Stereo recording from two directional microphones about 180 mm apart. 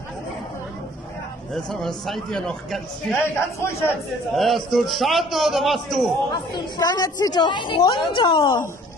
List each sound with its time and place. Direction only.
1.5 s a man's voice: centre (ahead or behind)
3.3 s a man's voice: 15° left (ahead or behind)
4.4 s a man's voice: centre (ahead or behind)
6.5 s a woman's voice: 20° left (ahead or behind)